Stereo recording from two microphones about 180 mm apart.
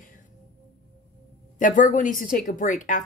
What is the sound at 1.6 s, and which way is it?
Speech, 45° left (ahead or behind).